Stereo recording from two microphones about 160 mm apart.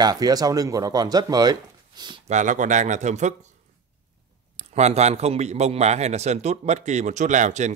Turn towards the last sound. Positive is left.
turn(degrees=-50)  # may be behind; listen again after turning